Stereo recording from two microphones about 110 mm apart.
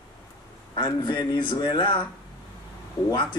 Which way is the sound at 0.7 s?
40° left (ahead or behind).